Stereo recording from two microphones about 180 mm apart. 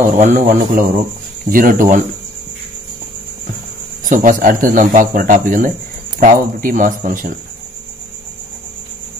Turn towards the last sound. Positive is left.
turn(degrees=-50)  # may be behind; listen again after turning